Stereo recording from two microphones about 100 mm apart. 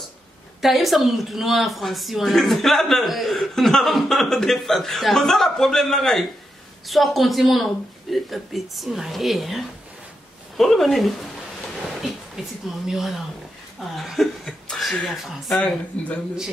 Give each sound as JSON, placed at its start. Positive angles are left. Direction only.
{"t": 0.6, "sound": "a woman's voice", "side_deg": 0}
{"t": 12.8, "sound": "a woman's voice", "side_deg": -5}
{"t": 15.6, "sound": "speech", "side_deg": 15}